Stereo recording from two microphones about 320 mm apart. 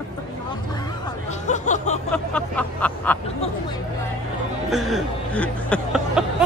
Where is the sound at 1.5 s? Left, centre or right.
Left.